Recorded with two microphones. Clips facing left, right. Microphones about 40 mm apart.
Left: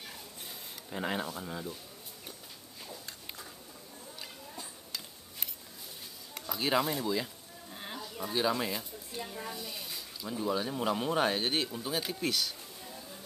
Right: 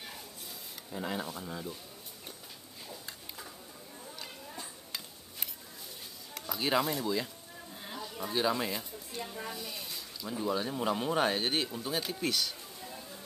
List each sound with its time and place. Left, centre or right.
0.9 s speech: left
1.2 s speech: centre
6.3 s speech: centre